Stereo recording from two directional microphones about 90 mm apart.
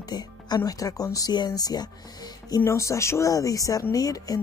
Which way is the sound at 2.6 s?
35° left (ahead or behind).